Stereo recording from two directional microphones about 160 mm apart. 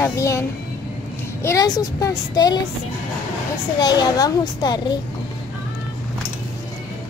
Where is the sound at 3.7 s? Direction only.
25° left (ahead or behind).